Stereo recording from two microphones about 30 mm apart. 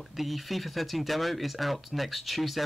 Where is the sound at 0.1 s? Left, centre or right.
Centre.